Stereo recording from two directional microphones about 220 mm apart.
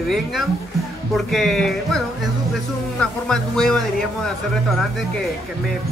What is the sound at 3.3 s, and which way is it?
A man's voice, 5° left (ahead or behind).